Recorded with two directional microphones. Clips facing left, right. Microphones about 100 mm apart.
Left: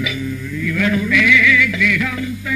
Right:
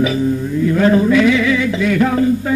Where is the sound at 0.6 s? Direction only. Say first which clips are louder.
Right 6 dB; 35° right (ahead or behind).